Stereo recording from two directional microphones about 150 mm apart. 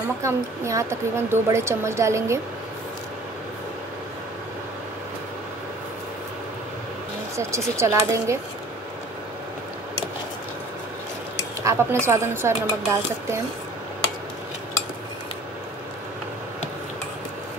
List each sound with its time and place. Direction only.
0.2 s a woman's voice: 20° right (ahead or behind)
7.3 s a woman's voice: 20° right (ahead or behind)
11.6 s speech: 20° right (ahead or behind)